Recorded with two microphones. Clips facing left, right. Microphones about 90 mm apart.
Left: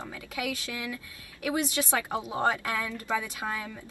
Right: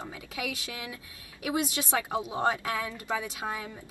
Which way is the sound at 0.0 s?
15° right (ahead or behind).